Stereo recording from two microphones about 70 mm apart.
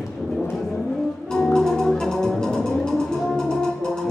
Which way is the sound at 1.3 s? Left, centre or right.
Centre.